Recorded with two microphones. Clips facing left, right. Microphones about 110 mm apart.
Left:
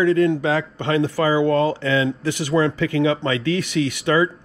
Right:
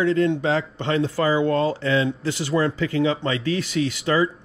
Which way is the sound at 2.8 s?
75° left (ahead or behind).